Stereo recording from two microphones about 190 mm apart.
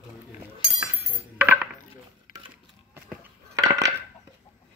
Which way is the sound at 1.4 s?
10° right (ahead or behind).